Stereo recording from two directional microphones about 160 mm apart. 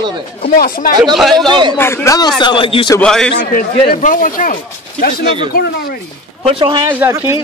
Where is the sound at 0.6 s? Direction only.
65° left (ahead or behind).